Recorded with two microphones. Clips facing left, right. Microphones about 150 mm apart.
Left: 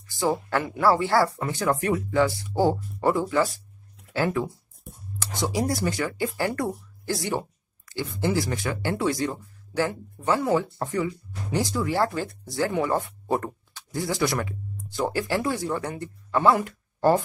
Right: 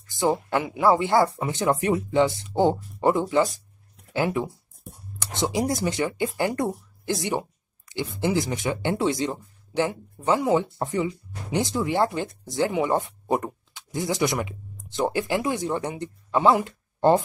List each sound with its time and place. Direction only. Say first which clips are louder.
0.1 s speech: right 2 dB; 20° right (ahead or behind)